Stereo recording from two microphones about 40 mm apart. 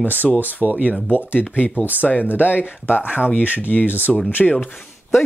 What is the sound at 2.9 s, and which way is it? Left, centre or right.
Speech, right.